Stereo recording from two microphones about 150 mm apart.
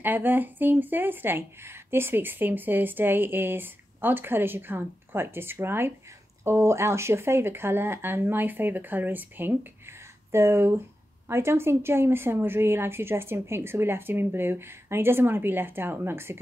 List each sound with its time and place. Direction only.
0.0 s speech: 10° right (ahead or behind)